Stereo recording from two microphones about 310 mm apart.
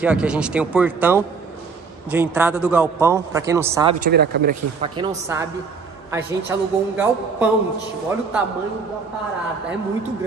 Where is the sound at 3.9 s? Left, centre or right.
Right.